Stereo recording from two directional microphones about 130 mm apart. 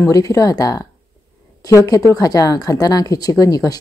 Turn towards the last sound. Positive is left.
turn(degrees=30)  # may be behind; listen again after turning